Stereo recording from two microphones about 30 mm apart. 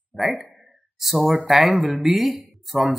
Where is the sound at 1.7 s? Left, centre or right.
Centre.